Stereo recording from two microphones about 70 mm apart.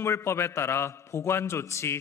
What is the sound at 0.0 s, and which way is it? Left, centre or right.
A man's voice, left.